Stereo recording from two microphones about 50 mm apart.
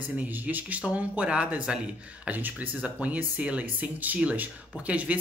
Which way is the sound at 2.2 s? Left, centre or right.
Right.